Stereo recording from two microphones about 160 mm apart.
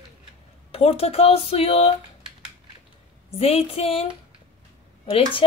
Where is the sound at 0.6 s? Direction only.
40° left (ahead or behind).